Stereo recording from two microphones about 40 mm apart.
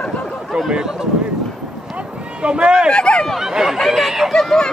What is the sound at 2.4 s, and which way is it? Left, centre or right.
Speech, right.